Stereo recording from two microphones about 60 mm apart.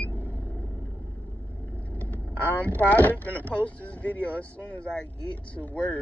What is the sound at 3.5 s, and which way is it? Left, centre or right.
Speech, left.